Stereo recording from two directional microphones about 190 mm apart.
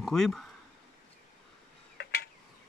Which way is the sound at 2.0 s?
55° left (ahead or behind).